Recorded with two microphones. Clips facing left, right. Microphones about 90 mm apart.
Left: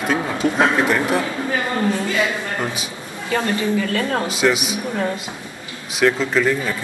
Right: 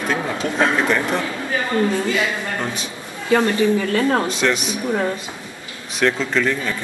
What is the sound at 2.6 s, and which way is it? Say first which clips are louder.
Speech: left 1 dB; 5° left (ahead or behind).